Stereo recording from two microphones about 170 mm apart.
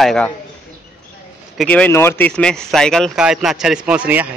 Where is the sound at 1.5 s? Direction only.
5° left (ahead or behind).